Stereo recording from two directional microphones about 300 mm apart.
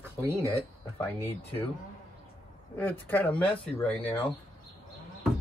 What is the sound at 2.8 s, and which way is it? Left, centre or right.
Speech, centre.